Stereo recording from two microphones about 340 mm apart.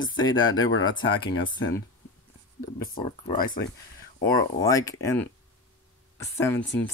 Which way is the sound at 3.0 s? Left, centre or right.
Centre.